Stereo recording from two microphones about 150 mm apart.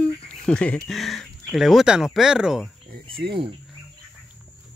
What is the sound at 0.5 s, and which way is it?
Speech, 5° left (ahead or behind).